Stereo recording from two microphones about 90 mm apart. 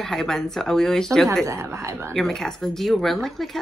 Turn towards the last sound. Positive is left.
turn(degrees=5)  # may be behind; listen again after turning